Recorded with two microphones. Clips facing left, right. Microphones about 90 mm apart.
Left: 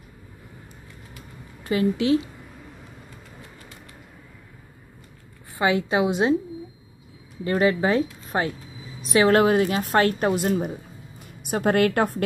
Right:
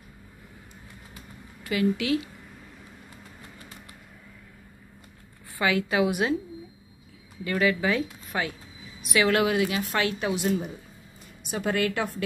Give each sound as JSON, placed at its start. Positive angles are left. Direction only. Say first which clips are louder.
{"t": 1.6, "sound": "speech", "louder": "left 3 dB", "side_deg": 30}
{"t": 5.6, "sound": "a woman's voice", "louder": "left 3 dB", "side_deg": 30}
{"t": 7.4, "sound": "a woman's voice", "louder": "left 4 dB", "side_deg": 35}